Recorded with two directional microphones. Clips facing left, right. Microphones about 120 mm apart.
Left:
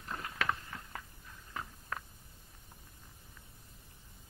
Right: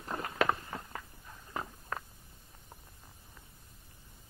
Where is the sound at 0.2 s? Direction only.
35° right (ahead or behind).